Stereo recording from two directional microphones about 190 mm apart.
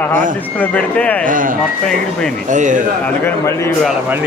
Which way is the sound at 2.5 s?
40° right (ahead or behind).